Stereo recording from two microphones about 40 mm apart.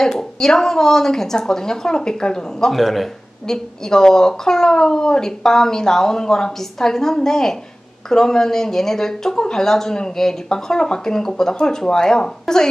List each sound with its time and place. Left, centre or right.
0.0 s a woman's voice: centre
2.7 s speech: centre
3.4 s a woman's voice: centre